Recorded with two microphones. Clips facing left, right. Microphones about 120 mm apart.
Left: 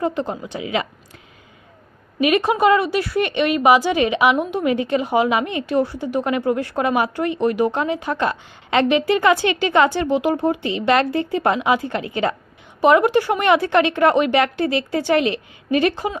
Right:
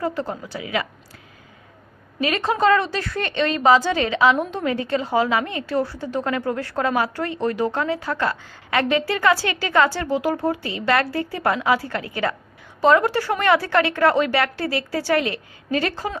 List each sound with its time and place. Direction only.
0.0 s a woman's voice: 20° left (ahead or behind)
2.1 s a woman's voice: 15° left (ahead or behind)